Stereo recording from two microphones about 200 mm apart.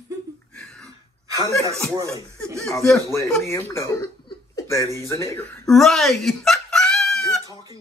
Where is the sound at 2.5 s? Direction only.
Centre (ahead or behind).